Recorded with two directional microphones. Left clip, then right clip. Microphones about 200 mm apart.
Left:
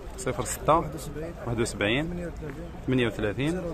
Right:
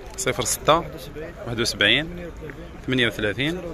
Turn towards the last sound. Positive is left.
turn(degrees=0)  # may be behind; listen again after turning